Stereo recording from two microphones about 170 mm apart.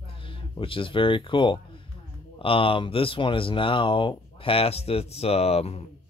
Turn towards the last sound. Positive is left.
turn(degrees=35)  # may be behind; listen again after turning